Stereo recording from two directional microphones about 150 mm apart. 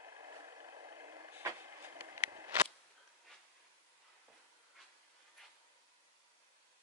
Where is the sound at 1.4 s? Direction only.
20° right (ahead or behind).